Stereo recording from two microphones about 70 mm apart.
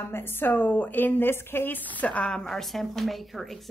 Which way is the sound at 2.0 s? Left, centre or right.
Centre.